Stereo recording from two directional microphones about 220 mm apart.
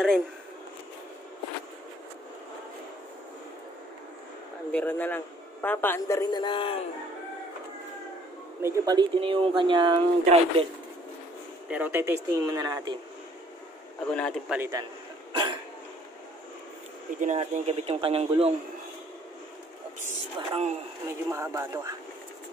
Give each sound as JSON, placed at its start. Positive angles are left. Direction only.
{"t": 4.7, "sound": "a man's voice", "side_deg": 5}
{"t": 8.6, "sound": "speech", "side_deg": -15}
{"t": 11.7, "sound": "speech", "side_deg": -10}
{"t": 14.1, "sound": "speech", "side_deg": 5}
{"t": 14.6, "sound": "speech", "side_deg": -15}
{"t": 15.3, "sound": "hiccup", "side_deg": -20}
{"t": 17.2, "sound": "speech", "side_deg": -30}
{"t": 20.3, "sound": "speech", "side_deg": -30}
{"t": 21.3, "sound": "speech", "side_deg": -15}